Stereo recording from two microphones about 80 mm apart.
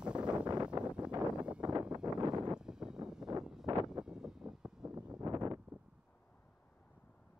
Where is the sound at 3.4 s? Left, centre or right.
Centre.